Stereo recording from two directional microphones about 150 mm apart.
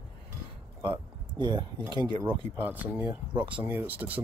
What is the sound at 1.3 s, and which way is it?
Speech, 30° right (ahead or behind).